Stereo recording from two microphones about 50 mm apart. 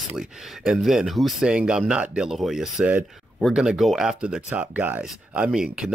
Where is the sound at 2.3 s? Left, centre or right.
Centre.